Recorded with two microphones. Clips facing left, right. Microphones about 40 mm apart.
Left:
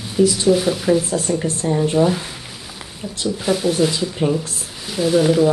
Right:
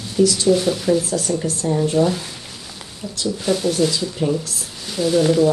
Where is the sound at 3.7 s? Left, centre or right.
Left.